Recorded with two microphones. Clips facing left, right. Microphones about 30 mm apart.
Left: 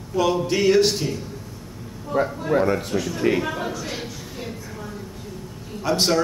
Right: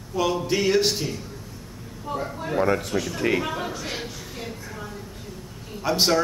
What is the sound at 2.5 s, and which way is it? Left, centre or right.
Speech, centre.